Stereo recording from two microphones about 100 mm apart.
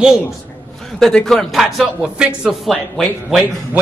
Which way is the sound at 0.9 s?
5° left (ahead or behind).